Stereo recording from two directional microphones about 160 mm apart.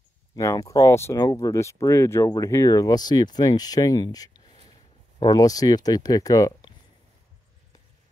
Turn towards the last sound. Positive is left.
turn(degrees=25)  # may be behind; listen again after turning